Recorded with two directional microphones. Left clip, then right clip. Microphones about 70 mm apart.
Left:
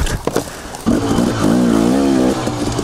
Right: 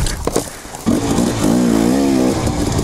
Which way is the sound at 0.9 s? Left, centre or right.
Right.